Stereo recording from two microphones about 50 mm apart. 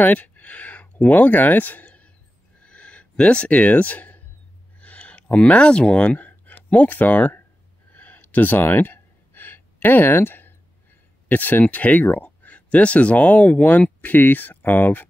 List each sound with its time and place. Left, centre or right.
0.0 s speech: left
1.9 s a sound: left
6.1 s speech: left
7.9 s gasp: left
11.2 s speech: left